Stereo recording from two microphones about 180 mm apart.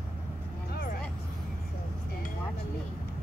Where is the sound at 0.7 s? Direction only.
55° left (ahead or behind).